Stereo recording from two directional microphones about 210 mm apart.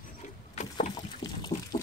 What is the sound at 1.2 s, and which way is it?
Water, 20° left (ahead or behind).